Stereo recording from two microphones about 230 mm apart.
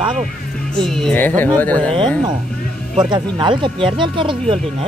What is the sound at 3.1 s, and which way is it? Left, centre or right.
Speech, right.